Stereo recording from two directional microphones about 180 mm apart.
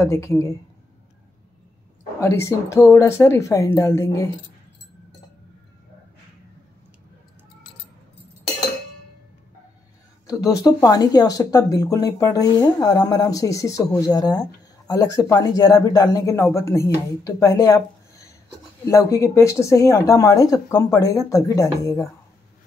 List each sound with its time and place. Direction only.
0.0 s speech: 15° left (ahead or behind)
2.1 s speech: 15° left (ahead or behind)
10.2 s speech: 20° left (ahead or behind)